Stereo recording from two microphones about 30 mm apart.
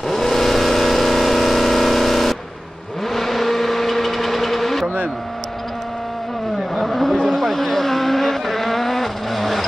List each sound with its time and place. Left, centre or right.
0.1 s vehicle: centre
4.8 s vehicle: right
6.7 s vehicle: centre
7.2 s vehicle: centre
7.4 s vehicle: centre